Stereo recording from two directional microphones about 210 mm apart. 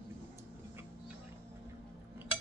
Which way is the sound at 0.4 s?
10° right (ahead or behind).